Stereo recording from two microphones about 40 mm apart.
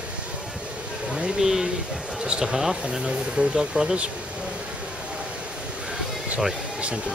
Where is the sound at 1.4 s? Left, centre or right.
Centre.